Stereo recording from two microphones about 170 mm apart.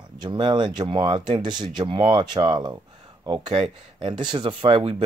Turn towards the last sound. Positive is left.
turn(degrees=-30)  # may be behind; listen again after turning